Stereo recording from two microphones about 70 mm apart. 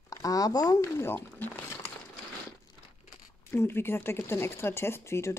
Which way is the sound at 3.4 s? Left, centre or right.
Left.